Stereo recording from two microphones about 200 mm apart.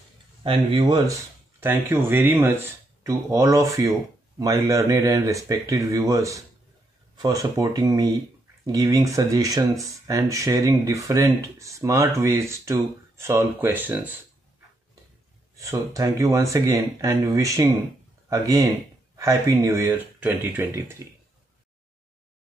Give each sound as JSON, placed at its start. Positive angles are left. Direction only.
{"t": 0.4, "sound": "speech", "side_deg": -25}
{"t": 15.5, "sound": "speech", "side_deg": -15}